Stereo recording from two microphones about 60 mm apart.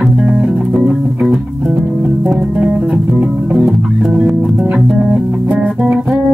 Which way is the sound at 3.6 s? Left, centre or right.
Centre.